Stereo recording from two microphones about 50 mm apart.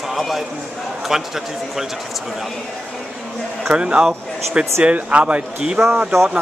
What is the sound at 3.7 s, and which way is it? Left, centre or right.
Speech, right.